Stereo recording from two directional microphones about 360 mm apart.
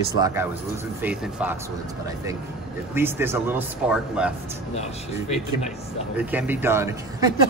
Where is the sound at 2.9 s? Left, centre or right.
Centre.